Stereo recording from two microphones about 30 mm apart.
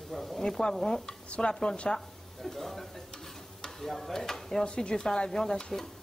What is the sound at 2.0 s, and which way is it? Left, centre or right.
Speech, centre.